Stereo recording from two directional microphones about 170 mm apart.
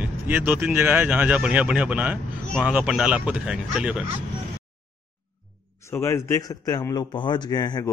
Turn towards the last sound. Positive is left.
turn(degrees=25)  # may be behind; listen again after turning